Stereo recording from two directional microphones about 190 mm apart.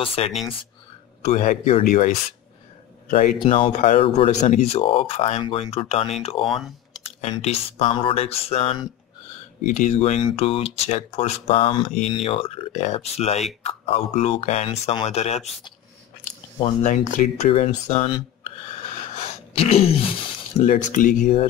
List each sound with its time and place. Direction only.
0.0 s speech: 30° left (ahead or behind)
1.8 s speech: 45° left (ahead or behind)
3.5 s speech: 30° left (ahead or behind)
16.8 s speech: 40° left (ahead or behind)